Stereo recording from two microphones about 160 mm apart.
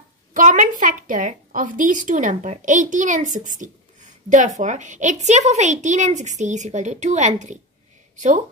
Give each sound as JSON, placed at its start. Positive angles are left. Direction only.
{"t": 0.3, "sound": "a woman's voice", "side_deg": -55}